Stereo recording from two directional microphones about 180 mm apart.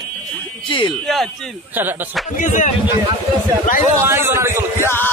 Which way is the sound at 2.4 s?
45° left (ahead or behind).